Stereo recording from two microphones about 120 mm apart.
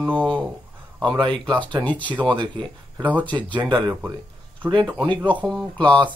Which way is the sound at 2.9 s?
15° right (ahead or behind).